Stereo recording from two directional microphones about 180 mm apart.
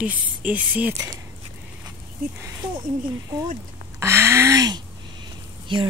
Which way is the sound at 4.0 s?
15° right (ahead or behind).